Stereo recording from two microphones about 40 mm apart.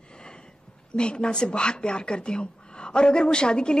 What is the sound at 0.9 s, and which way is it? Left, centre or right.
A woman's voice, left.